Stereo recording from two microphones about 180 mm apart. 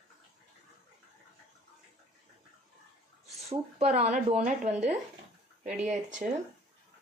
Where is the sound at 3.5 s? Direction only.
35° right (ahead or behind).